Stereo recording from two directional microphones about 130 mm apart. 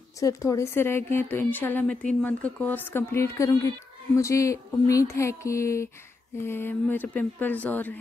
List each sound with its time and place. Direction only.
0.2 s speech: 25° left (ahead or behind)
4.2 s a sound: 25° left (ahead or behind)
6.4 s speech: 15° left (ahead or behind)